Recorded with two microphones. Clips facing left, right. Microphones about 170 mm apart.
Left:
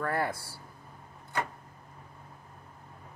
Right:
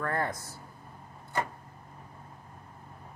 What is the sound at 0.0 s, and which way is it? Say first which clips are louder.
Speech: left 1 dB; 10° left (ahead or behind).